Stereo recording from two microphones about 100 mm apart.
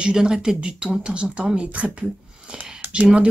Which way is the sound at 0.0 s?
10° right (ahead or behind).